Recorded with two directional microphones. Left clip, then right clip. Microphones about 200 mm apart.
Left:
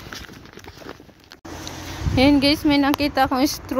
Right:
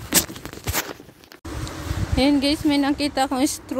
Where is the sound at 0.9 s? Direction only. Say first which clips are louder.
Right 2 dB; 55° right (ahead or behind).